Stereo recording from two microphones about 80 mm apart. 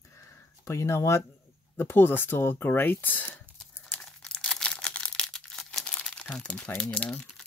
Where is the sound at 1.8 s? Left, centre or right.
Left.